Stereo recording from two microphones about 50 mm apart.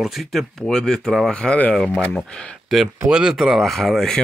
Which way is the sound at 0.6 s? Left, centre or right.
Centre.